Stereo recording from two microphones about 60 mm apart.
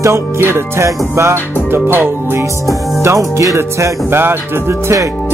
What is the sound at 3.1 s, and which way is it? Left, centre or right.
Music, right.